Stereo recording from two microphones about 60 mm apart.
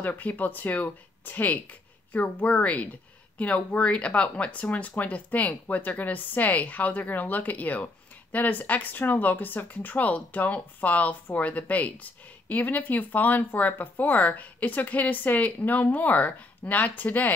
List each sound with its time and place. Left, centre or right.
0.0 s speech: left